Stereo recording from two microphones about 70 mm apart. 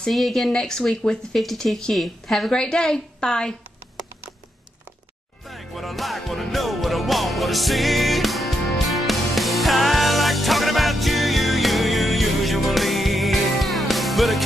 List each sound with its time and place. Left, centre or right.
0.0 s speech: centre
5.5 s music: centre